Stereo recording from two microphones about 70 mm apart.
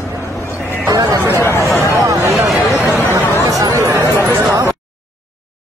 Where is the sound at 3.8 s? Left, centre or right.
Right.